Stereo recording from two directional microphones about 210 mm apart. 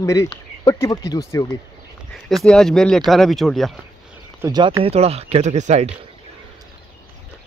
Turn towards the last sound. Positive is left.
turn(degrees=-35)  # may be behind; listen again after turning